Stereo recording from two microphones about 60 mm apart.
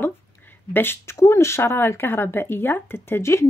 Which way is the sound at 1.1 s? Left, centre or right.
Left.